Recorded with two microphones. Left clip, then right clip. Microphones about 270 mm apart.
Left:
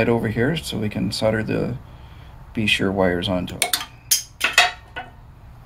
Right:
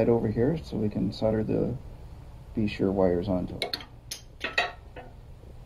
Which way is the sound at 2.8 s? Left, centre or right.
Left.